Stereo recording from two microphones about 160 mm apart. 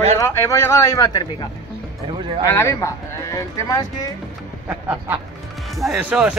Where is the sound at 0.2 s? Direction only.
20° left (ahead or behind).